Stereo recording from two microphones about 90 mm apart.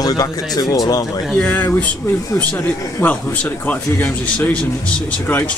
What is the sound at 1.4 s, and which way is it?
A man's voice, 20° left (ahead or behind).